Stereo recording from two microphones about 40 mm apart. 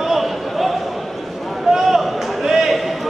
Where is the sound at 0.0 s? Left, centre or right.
Centre.